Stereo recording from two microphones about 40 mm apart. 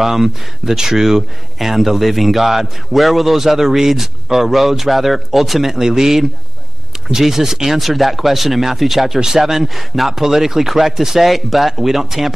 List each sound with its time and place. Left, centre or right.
0.0 s speech: centre